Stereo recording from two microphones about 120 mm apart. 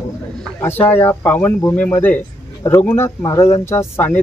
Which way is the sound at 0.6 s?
15° left (ahead or behind).